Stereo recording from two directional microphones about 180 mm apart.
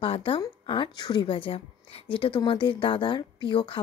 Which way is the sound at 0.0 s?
30° left (ahead or behind).